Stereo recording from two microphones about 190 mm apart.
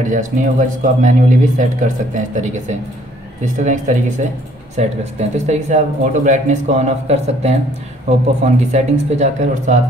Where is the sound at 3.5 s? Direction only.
40° right (ahead or behind).